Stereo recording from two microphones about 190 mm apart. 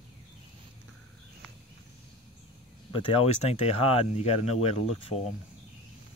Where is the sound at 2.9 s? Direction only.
30° left (ahead or behind).